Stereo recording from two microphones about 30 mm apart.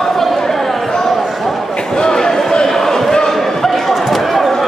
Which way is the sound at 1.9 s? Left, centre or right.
Left.